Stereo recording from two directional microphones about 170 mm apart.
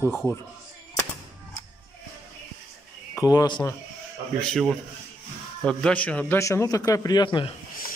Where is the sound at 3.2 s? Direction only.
20° left (ahead or behind).